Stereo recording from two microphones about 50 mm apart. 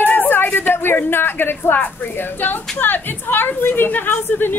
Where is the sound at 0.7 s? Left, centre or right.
Left.